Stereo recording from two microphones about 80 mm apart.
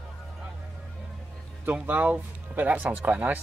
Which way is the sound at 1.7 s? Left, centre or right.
Centre.